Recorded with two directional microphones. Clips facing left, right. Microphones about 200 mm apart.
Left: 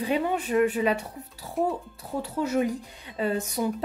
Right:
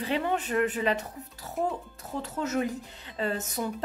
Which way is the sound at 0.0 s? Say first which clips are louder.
Left 3 dB; 10° left (ahead or behind).